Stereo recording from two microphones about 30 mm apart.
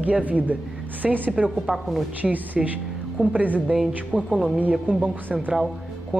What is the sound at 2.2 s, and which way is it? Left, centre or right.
Speech, centre.